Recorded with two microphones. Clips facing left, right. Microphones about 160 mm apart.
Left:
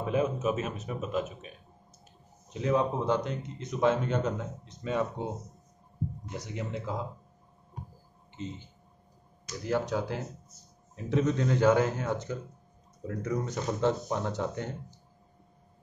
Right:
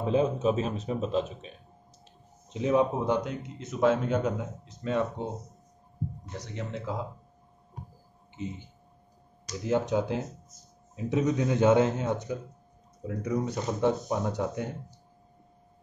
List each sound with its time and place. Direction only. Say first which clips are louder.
0.0 s speech: right 3 dB; 30° right (ahead or behind)
2.5 s speech: right 3 dB; 20° right (ahead or behind)
6.3 s speech: left 1 dB; 10° left (ahead or behind)
6.9 s speech: right 2 dB; centre (ahead or behind)
8.4 s speech: right 2 dB; 15° right (ahead or behind)
9.7 s speech: right 3 dB; 20° right (ahead or behind)
13.0 s speech: right 2 dB; 5° right (ahead or behind)